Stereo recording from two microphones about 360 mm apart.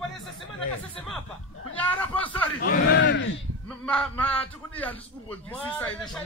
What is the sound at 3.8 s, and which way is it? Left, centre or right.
A man's voice, centre.